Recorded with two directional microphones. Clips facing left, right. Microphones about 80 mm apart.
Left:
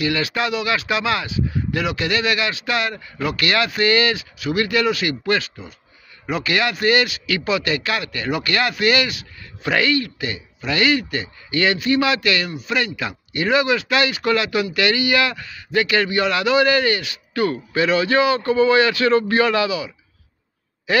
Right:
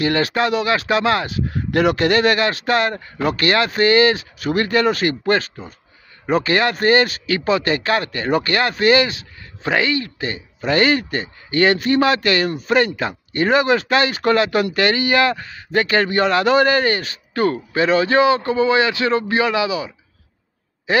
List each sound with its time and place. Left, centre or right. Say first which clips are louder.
0.0 s speech: right 4 dB; right; by 19.8 s centre
20.9 s a man's voice: right 1 dB; right